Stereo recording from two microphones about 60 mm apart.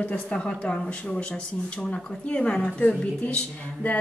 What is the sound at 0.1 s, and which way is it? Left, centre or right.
Speech, centre.